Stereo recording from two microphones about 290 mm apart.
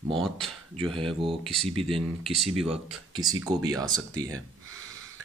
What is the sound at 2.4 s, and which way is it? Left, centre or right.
Speech, centre.